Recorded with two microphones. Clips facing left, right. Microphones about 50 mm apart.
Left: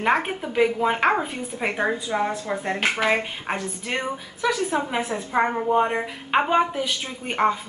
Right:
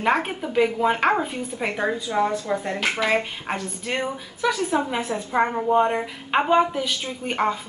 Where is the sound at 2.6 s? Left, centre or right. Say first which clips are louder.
Left 1 dB; left.